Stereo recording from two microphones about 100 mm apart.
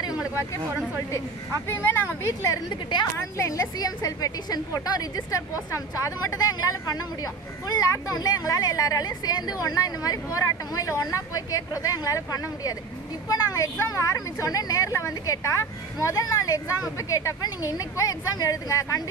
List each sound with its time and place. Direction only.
1.7 s speech: 20° left (ahead or behind)
2.7 s a woman's voice: 50° left (ahead or behind)
3.3 s speech: 35° left (ahead or behind)